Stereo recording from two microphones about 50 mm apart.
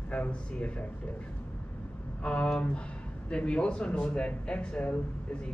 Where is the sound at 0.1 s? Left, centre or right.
Left.